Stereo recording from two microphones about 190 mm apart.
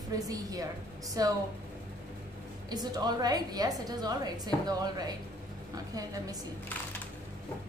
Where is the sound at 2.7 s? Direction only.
20° right (ahead or behind).